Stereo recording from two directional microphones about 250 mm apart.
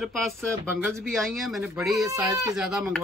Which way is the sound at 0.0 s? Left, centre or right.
Centre.